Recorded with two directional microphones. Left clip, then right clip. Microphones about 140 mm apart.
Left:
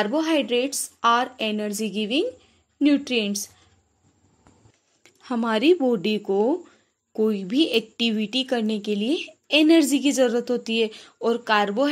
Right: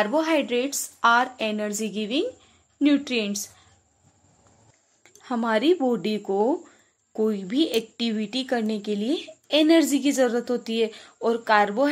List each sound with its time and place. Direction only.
0.0 s speech: 20° left (ahead or behind)
5.0 s speech: 15° left (ahead or behind)